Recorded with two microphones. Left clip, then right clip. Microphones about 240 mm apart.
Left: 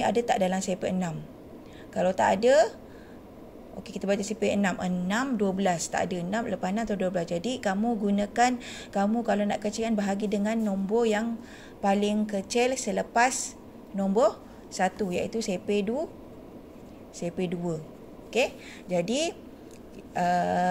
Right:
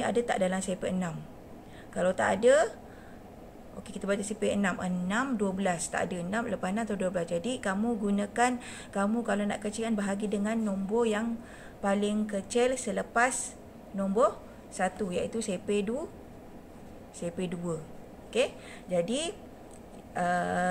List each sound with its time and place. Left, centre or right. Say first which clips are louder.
0.0 s speech: left 3 dB; centre
3.9 s speech: left 3 dB; centre
17.2 s speech: left 4 dB; centre